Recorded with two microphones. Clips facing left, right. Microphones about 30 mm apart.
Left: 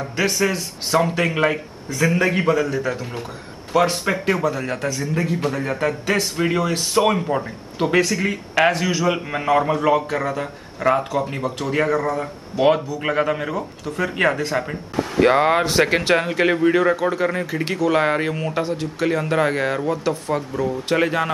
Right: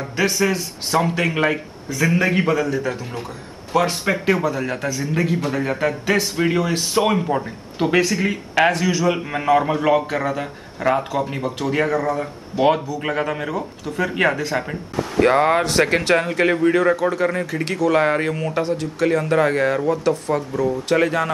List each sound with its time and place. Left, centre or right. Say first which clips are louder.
0.0 s speech: right 1 dB; centre
5.1 s a man's voice: right 3 dB; centre